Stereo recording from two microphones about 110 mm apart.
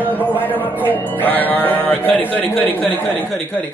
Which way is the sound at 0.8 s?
15° left (ahead or behind).